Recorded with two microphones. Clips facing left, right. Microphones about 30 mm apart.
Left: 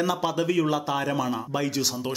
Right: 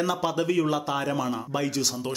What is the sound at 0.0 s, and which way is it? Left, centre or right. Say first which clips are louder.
Speech: left 1 dB; centre.